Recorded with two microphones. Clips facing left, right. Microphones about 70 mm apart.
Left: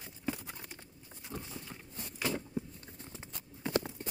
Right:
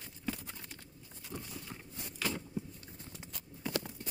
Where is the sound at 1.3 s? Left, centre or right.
Left.